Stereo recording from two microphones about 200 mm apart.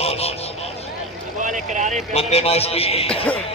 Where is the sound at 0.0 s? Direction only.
30° left (ahead or behind).